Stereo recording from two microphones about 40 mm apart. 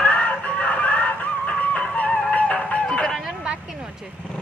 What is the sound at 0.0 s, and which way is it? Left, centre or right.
Music, left.